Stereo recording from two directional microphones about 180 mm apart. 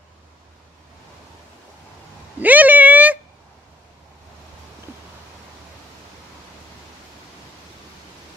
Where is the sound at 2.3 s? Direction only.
10° right (ahead or behind).